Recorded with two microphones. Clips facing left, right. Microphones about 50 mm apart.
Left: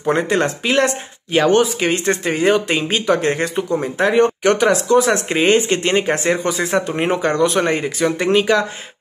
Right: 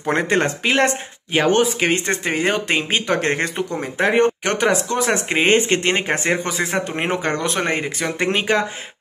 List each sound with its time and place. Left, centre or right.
0.1 s speech: right